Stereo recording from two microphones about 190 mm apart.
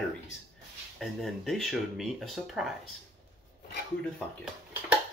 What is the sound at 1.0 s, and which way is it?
Speech, centre (ahead or behind).